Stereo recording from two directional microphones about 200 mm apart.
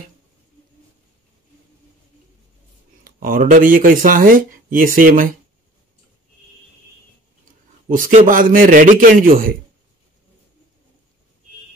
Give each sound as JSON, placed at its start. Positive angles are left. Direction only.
{"t": 3.0, "sound": "speech", "side_deg": -45}
{"t": 7.9, "sound": "speech", "side_deg": -40}